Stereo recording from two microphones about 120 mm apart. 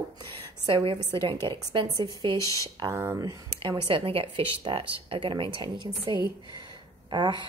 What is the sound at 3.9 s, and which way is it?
Speech, 45° right (ahead or behind).